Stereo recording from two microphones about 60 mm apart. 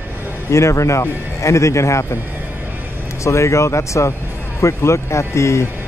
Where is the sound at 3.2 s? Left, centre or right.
Left.